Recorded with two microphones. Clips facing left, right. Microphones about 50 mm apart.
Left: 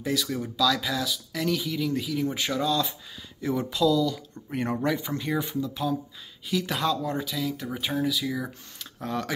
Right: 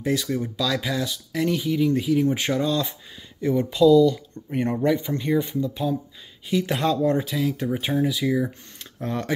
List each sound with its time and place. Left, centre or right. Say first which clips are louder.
0.0 s speech: right 4 dB; right
3.3 s speech: right 5 dB; centre
3.7 s speech: right 9 dB; centre
5.6 s speech: right 3 dB; centre; by 7.2 s right
7.2 s speech: right 5 dB; right